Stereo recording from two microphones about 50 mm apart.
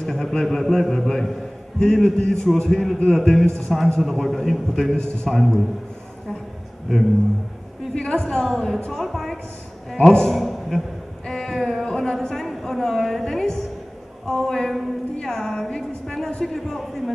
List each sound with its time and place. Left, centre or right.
0.0 s a man's voice: centre
4.0 s a man's voice: centre
4.9 s a man's voice: centre
5.3 s a man's voice: centre
7.9 s a woman's voice: centre
9.9 s a man's voice: centre
10.3 s a sound: centre
11.8 s a sound: centre
12.1 s music: centre
14.2 s a sound: centre
15.2 s music: centre
16.1 s a sound: centre
16.4 s a man's voice: centre